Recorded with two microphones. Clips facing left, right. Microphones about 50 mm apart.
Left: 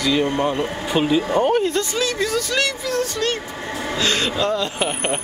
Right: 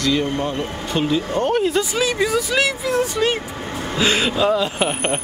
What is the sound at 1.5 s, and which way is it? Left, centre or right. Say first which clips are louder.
Speech: right 1 dB; centre.